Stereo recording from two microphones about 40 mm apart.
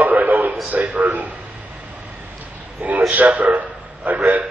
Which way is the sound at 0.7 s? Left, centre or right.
Right.